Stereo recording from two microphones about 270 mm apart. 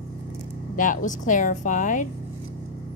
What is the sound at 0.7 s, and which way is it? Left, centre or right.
Speech, left.